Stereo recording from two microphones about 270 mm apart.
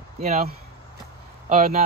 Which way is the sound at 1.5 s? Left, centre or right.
Right.